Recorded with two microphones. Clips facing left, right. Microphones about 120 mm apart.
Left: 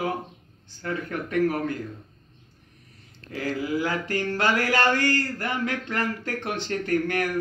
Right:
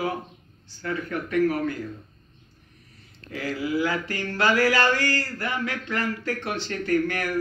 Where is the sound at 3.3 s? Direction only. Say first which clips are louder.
Even; 45° left (ahead or behind).